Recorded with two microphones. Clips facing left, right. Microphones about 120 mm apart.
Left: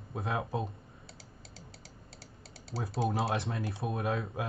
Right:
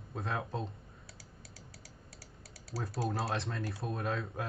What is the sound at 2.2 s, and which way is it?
Typing, 25° left (ahead or behind).